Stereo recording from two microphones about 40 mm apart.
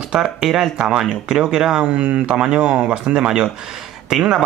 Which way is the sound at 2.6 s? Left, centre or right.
Right.